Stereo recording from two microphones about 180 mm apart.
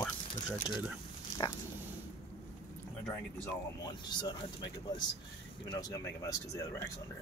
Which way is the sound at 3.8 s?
25° left (ahead or behind).